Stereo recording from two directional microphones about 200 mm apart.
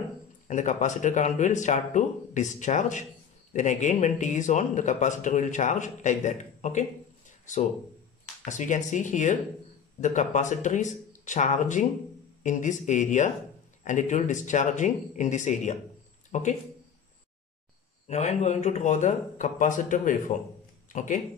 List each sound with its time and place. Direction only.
0.5 s speech: 35° left (ahead or behind)
16.3 s a sound: 35° left (ahead or behind)
18.0 s speech: 35° left (ahead or behind)